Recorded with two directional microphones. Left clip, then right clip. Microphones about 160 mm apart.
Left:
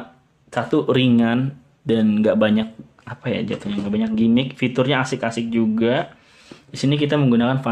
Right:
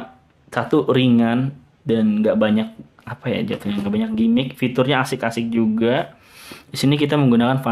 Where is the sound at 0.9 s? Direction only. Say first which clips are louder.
Right 1 dB; centre (ahead or behind).